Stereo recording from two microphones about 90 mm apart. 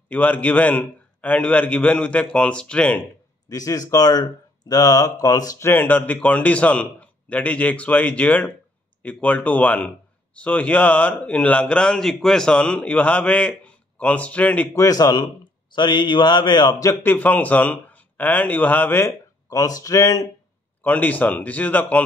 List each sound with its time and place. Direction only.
0.1 s speech: 15° left (ahead or behind)
3.4 s speech: 40° left (ahead or behind)
5.6 s speech: 25° left (ahead or behind)
14.7 s speech: 40° left (ahead or behind)
15.7 s a man's voice: 55° left (ahead or behind)
16.7 s speech: 35° left (ahead or behind)
17.0 s a man's voice: 20° left (ahead or behind)
19.5 s speech: 40° left (ahead or behind)
20.8 s speech: 20° left (ahead or behind)